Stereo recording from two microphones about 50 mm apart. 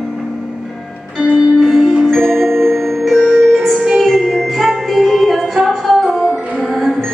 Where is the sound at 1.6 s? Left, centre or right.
Centre.